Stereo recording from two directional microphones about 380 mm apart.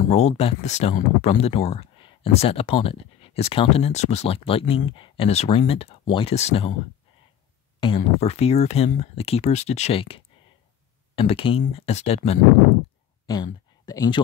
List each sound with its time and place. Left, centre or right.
0.0 s speech: centre
7.8 s speech: centre